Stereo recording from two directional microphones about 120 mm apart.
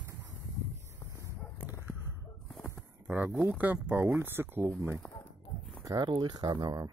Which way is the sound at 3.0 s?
15° right (ahead or behind).